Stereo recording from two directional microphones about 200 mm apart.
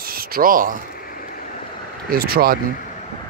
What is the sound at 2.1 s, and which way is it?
Speech, 50° right (ahead or behind).